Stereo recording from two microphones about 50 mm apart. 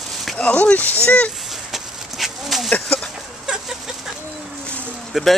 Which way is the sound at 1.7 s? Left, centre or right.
Centre.